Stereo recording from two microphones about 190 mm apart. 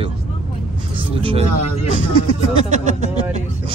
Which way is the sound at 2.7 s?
35° right (ahead or behind).